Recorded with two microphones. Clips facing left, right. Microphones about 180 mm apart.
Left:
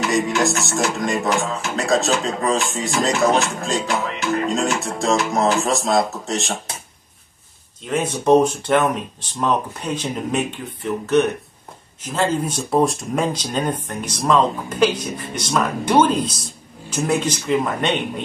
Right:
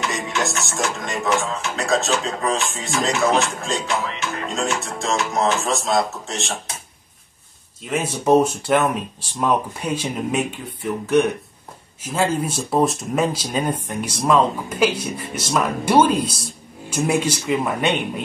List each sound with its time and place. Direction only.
0.1 s music: 35° left (ahead or behind)
7.8 s speech: 5° right (ahead or behind)